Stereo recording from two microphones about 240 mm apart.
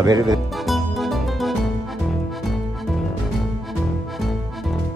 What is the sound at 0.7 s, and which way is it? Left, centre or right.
Music, centre.